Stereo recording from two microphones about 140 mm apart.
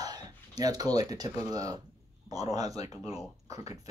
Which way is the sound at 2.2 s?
25° right (ahead or behind).